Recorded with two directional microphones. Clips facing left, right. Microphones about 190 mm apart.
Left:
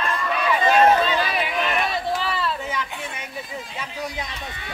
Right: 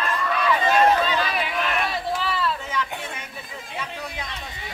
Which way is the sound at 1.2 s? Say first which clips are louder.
Left 1 dB; 5° left (ahead or behind).